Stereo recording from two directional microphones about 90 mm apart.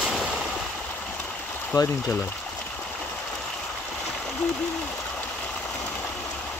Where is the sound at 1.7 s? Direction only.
40° left (ahead or behind).